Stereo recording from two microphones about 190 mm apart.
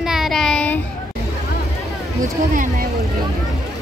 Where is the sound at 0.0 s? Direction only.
Centre (ahead or behind).